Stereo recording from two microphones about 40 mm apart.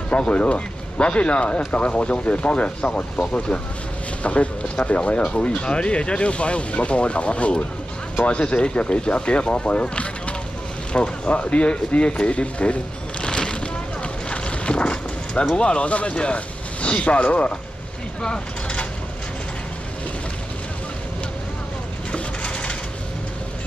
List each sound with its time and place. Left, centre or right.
0.2 s speech: left
4.2 s speech: left
13.2 s music: left
14.3 s a sound: left
15.5 s speech: left
18.2 s a sound: left
22.1 s crushing: left